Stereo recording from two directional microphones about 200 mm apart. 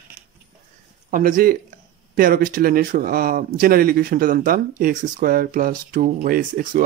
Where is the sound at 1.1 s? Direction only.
45° right (ahead or behind).